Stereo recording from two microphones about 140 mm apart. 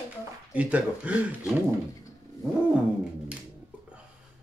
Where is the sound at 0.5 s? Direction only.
10° right (ahead or behind).